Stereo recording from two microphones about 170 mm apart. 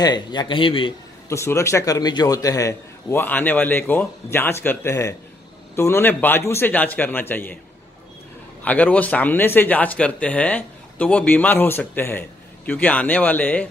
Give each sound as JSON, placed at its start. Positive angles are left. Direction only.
{"t": 0.0, "sound": "a man's voice", "side_deg": 25}
{"t": 1.3, "sound": "speech", "side_deg": 15}
{"t": 8.6, "sound": "speech", "side_deg": 10}